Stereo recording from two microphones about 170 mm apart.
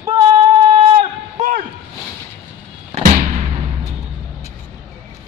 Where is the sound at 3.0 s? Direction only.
45° right (ahead or behind).